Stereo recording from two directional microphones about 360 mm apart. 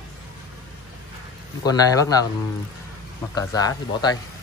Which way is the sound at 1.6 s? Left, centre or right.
Centre.